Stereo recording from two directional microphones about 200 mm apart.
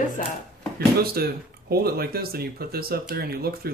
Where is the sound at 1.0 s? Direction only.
50° right (ahead or behind).